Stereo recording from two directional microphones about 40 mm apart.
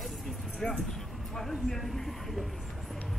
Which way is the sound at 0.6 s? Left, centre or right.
Centre.